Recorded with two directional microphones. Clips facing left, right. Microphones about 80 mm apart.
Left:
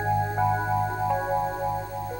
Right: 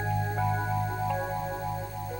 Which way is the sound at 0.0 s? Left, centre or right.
Left.